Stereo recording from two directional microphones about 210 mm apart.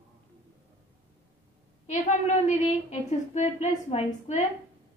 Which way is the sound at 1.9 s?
35° left (ahead or behind).